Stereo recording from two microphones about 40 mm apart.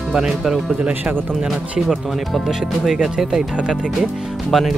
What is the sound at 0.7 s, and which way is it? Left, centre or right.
Speech, right.